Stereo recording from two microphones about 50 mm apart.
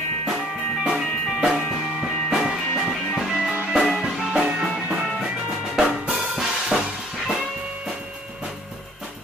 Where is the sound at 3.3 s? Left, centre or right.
Centre.